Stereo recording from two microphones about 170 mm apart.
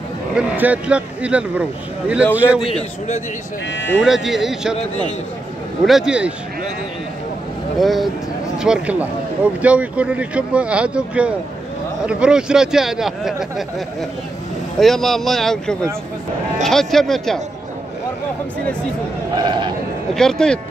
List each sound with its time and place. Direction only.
0.3 s speech: 5° right (ahead or behind)
3.7 s speech: 90° left
4.0 s speech: centre (ahead or behind)
5.9 s speech: 5° right (ahead or behind)
7.8 s speech: centre (ahead or behind)
19.3 s speech: 25° right (ahead or behind)
20.2 s speech: 5° left (ahead or behind)